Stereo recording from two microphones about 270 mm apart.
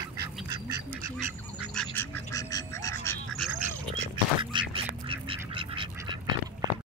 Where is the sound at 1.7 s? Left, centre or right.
Centre.